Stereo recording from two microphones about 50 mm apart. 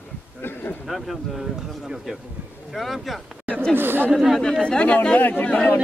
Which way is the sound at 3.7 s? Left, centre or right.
Right.